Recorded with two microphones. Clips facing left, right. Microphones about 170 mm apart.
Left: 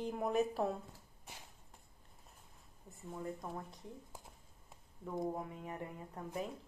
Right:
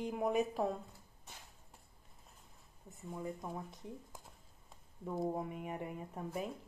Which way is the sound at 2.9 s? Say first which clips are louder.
Right 1 dB; centre (ahead or behind).